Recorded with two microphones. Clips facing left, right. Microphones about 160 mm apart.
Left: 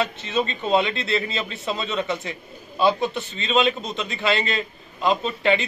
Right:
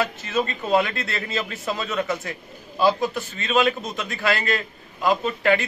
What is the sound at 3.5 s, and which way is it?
A man's voice, 25° left (ahead or behind).